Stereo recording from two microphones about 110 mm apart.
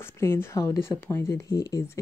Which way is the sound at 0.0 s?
20° left (ahead or behind).